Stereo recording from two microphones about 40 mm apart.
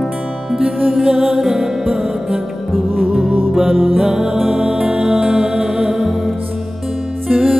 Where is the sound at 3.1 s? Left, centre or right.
Centre.